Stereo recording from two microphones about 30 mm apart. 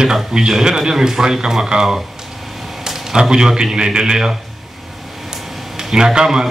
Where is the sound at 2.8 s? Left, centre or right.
Centre.